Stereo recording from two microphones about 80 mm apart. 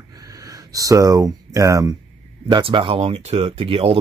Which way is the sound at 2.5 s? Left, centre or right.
Right.